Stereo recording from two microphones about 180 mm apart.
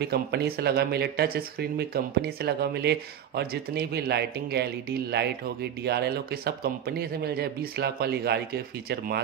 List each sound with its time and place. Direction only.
0.0 s speech: 65° right (ahead or behind)